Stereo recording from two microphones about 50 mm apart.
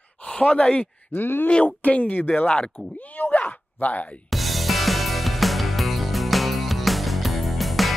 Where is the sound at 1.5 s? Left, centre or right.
Left.